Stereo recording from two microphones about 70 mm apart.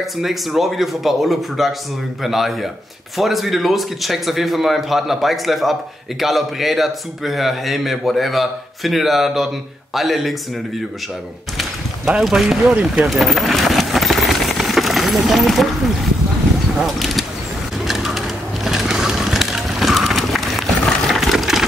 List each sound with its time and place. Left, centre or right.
0.0 s speech: centre
11.5 s a sound: centre
12.7 s speech: centre
13.1 s vehicle: centre
16.7 s speech: centre
17.8 s a sound: centre